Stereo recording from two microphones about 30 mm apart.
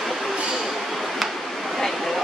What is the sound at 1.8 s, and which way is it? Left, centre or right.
Vehicle, centre.